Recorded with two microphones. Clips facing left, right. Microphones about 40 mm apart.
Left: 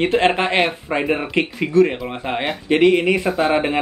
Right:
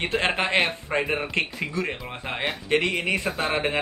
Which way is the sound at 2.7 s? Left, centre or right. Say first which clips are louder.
Left 10 dB; left.